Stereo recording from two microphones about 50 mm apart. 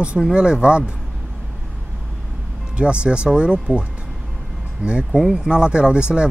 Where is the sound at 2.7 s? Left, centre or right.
Right.